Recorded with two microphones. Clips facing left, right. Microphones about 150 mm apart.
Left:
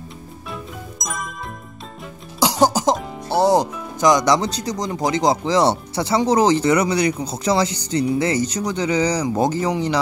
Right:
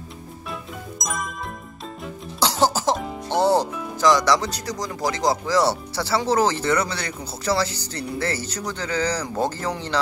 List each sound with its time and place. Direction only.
0.5 s music: centre (ahead or behind)
2.4 s music: 15° left (ahead or behind)
4.0 s speech: 20° left (ahead or behind)